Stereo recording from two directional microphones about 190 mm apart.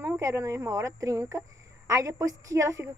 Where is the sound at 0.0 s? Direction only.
15° right (ahead or behind).